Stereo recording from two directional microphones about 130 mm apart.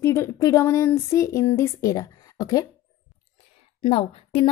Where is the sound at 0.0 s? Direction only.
20° left (ahead or behind).